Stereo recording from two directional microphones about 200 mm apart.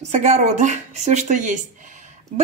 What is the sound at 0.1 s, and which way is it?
Speech, 35° right (ahead or behind).